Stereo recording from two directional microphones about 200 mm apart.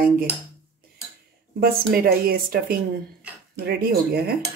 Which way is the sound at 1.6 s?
50° right (ahead or behind).